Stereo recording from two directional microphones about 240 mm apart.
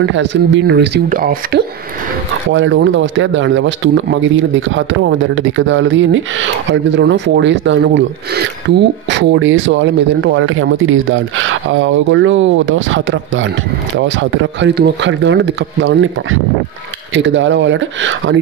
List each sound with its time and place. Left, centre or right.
0.0 s speech: right
2.5 s speech: right